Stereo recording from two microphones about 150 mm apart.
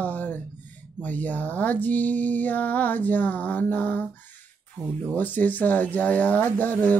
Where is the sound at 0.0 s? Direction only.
10° left (ahead or behind).